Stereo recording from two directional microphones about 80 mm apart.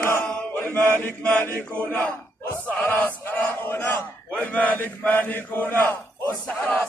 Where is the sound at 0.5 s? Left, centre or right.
Left.